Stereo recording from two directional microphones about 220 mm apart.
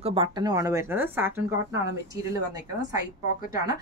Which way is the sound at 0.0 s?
25° right (ahead or behind).